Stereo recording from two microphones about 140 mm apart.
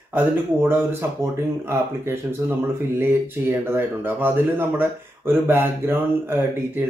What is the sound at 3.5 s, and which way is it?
Speech, 15° right (ahead or behind).